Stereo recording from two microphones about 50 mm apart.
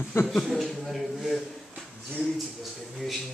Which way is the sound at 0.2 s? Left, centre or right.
Left.